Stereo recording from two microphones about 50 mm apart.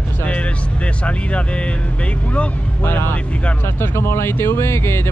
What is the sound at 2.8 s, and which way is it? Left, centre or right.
Speech, left.